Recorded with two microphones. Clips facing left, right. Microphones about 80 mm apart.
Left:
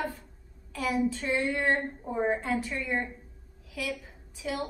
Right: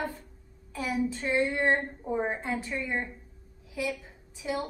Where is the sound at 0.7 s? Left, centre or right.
Right.